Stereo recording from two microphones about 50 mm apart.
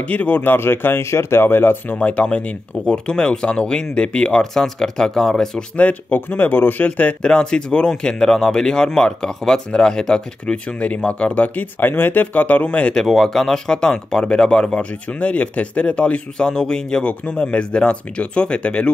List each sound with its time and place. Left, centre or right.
0.1 s speech: left
0.4 s speech: left
2.0 s speech: left
4.4 s speech: centre
5.8 s speech: left
6.1 s speech: left
7.0 s speech: left
11.8 s speech: left
12.9 s speech: centre; by 18.9 s left